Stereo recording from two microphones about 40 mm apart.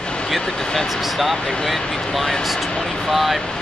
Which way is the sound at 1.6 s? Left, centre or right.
Centre.